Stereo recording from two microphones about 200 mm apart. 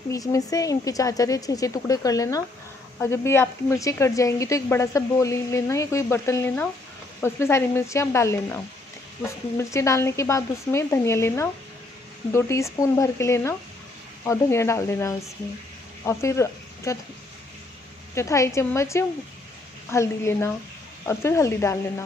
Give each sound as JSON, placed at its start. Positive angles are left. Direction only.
{"t": 0.1, "sound": "a woman's voice", "side_deg": 15}
{"t": 9.6, "sound": "a woman's voice", "side_deg": 15}
{"t": 18.1, "sound": "a woman's voice", "side_deg": 15}